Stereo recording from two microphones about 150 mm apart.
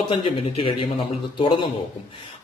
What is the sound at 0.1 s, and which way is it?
A man's voice, 40° left (ahead or behind).